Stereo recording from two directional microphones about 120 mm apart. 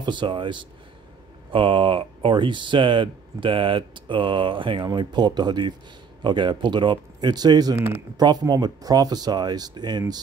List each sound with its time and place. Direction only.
0.0 s speech: 40° right (ahead or behind)
7.7 s speech: 20° right (ahead or behind)
8.2 s speech: 35° right (ahead or behind)